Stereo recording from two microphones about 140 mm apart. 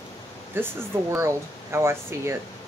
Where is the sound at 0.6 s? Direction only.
15° right (ahead or behind).